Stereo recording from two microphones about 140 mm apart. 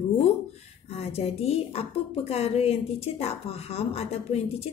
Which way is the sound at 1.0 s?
45° left (ahead or behind).